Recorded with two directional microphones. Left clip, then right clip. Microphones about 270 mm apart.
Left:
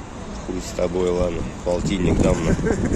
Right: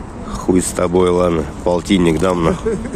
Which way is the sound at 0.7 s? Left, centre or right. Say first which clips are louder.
Right 4 dB; right.